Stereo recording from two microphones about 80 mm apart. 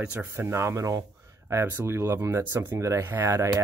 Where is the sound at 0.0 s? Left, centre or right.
Centre.